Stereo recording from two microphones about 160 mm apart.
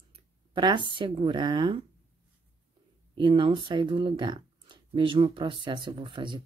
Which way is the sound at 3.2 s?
35° right (ahead or behind).